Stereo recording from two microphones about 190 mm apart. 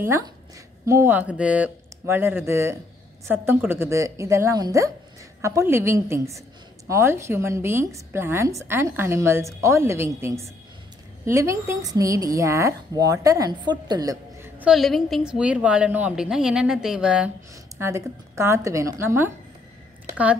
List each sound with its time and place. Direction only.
0.8 s speech: 15° right (ahead or behind)
14.6 s a woman's voice: centre (ahead or behind)